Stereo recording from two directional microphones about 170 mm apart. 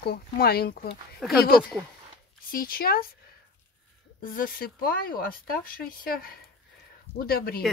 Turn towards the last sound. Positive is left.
turn(degrees=65)  # may be behind; listen again after turning